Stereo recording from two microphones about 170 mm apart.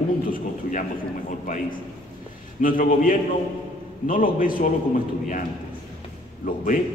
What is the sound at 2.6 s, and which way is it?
A man's voice, 55° left (ahead or behind).